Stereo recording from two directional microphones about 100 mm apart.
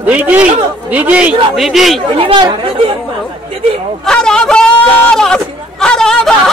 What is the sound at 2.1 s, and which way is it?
Speech, 55° right (ahead or behind).